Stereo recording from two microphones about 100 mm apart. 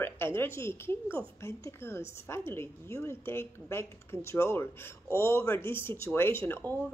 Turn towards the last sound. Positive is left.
turn(degrees=20)  # may be behind; listen again after turning